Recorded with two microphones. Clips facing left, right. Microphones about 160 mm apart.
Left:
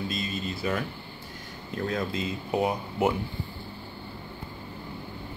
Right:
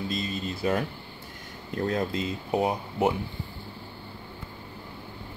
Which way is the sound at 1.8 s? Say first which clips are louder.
Right 2 dB; 35° right (ahead or behind).